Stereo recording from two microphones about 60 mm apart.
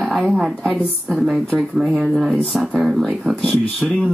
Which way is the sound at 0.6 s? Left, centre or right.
Centre.